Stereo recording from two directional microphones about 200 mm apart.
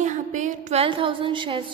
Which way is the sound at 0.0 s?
40° right (ahead or behind).